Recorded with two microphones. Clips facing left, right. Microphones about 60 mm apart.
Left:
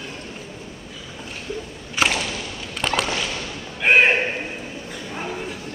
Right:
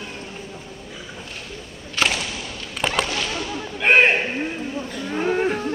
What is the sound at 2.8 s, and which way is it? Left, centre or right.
Fireworks, centre.